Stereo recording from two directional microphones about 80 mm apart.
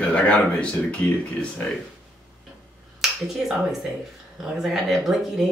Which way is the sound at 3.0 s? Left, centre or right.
Centre.